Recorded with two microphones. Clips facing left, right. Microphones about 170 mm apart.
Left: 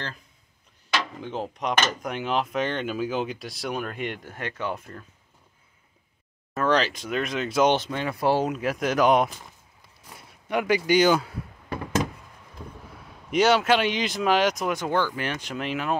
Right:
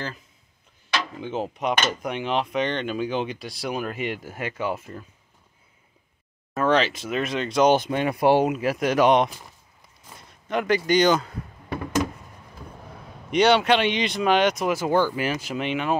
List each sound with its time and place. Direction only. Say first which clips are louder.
1.2 s speech: right 3 dB; centre (ahead or behind)
6.5 s speech: right 2 dB; 5° right (ahead or behind)
7.7 s speech: right 4 dB; 15° right (ahead or behind)
8.5 s speech: right 2 dB; centre (ahead or behind)
13.3 s speech: right 2 dB; 5° left (ahead or behind)